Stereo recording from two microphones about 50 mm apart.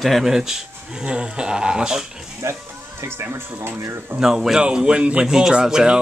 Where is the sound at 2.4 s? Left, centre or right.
Right.